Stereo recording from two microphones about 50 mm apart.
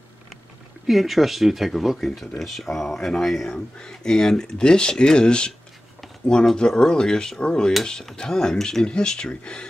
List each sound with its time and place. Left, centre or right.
0.8 s speech: centre